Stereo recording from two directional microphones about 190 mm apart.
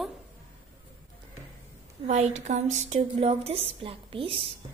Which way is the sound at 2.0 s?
40° right (ahead or behind).